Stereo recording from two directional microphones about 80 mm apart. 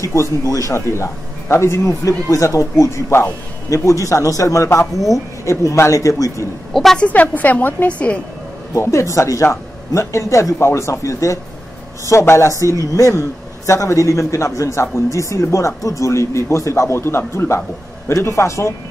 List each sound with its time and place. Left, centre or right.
0.0 s speech: left
6.7 s a woman's voice: centre
7.0 s a woman's voice: centre
8.7 s speech: left
12.6 s a woman's voice: right
12.9 s speech: left